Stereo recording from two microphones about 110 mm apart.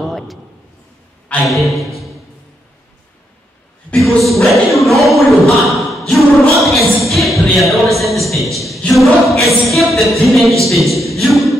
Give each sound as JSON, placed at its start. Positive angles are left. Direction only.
{"t": 0.0, "sound": "a sound", "side_deg": 0}
{"t": 1.5, "sound": "a capella", "side_deg": 0}
{"t": 3.9, "sound": "speech", "side_deg": 5}
{"t": 5.7, "sound": "a sound", "side_deg": 0}
{"t": 8.5, "sound": "a capella", "side_deg": 0}
{"t": 10.6, "sound": "speech", "side_deg": 0}